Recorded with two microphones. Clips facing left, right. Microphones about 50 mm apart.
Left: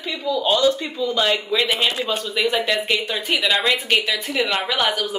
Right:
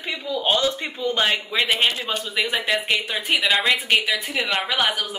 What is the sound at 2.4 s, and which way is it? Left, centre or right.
A woman's voice, centre.